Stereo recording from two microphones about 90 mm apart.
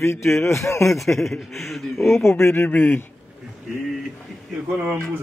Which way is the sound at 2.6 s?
20° left (ahead or behind).